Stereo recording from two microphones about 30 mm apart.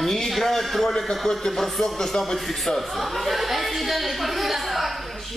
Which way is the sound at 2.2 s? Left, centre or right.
Centre.